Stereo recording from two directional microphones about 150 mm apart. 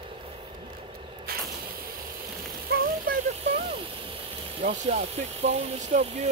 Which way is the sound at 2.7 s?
90° right.